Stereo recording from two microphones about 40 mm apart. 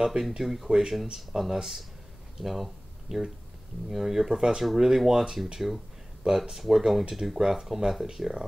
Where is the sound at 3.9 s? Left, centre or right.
Centre.